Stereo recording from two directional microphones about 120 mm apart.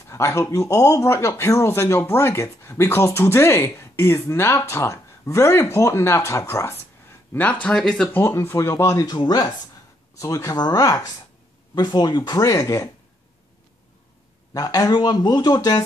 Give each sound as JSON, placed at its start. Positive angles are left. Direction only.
{"t": 0.0, "sound": "speech", "side_deg": 25}
{"t": 7.6, "sound": "speech", "side_deg": 10}
{"t": 14.5, "sound": "speech", "side_deg": 30}